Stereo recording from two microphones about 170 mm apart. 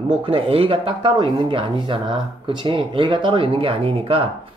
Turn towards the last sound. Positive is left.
turn(degrees=-35)  # may be behind; listen again after turning